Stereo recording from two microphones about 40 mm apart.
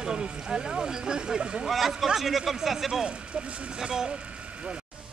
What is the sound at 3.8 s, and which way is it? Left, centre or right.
Speech, centre.